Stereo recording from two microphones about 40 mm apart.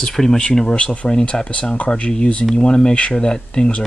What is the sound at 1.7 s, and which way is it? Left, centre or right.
Speech, left.